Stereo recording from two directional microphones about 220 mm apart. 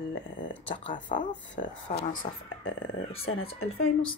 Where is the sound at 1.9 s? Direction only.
35° left (ahead or behind).